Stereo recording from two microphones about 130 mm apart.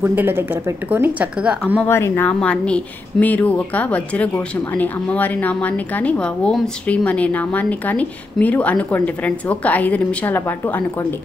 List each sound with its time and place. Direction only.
0.0 s a woman's voice: 15° right (ahead or behind)
1.9 s speech: 20° left (ahead or behind)
2.2 s speech: 10° left (ahead or behind)